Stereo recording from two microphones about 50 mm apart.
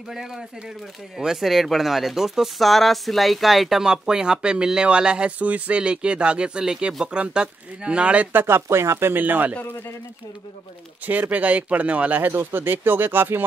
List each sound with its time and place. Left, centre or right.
0.1 s speech: centre; by 8.3 s right
8.3 s speech: right
9.1 s speech: right
11.1 s speech: right
12.2 s speech: right